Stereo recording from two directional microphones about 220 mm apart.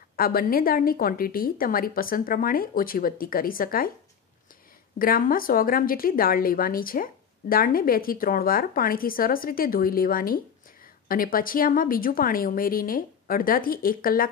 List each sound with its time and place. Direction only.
0.1 s a woman's voice: 40° left (ahead or behind)
4.9 s a woman's voice: 40° left (ahead or behind)